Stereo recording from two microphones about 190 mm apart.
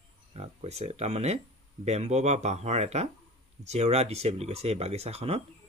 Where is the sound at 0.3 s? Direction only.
35° right (ahead or behind).